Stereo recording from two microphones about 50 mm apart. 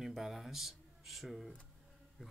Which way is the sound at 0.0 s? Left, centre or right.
Centre.